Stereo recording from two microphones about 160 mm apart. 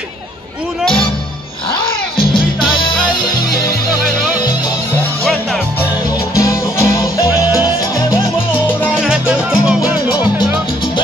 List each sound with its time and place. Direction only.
2.3 s music: 30° left (ahead or behind)
5.2 s music: 5° left (ahead or behind)
6.3 s music: 20° left (ahead or behind)
8.9 s music: 5° right (ahead or behind)